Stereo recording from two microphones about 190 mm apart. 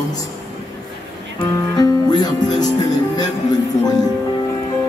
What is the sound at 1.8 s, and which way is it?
Music, 20° left (ahead or behind).